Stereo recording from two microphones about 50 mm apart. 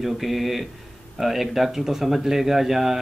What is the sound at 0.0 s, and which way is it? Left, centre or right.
Speech, centre.